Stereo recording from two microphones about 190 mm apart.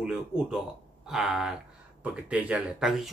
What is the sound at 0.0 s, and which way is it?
Speech, 5° right (ahead or behind).